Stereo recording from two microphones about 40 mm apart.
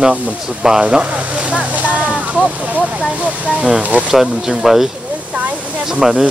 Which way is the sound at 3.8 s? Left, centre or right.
Right.